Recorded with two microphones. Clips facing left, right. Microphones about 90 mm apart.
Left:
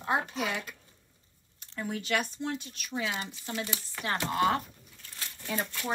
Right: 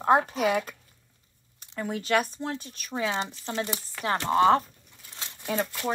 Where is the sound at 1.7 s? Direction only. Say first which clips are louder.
Right 5 dB; 45° right (ahead or behind).